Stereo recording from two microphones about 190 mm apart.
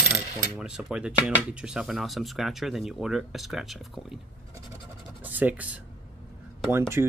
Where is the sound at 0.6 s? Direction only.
5° right (ahead or behind).